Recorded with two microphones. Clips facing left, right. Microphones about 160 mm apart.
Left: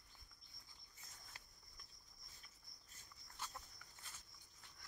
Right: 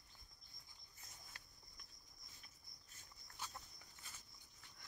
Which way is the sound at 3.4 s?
Centre (ahead or behind).